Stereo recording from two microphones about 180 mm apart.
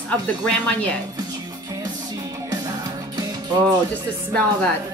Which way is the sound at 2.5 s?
20° right (ahead or behind).